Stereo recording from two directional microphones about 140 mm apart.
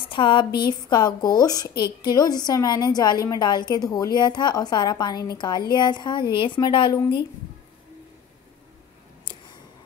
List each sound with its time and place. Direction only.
0.0 s a woman's voice: 35° left (ahead or behind)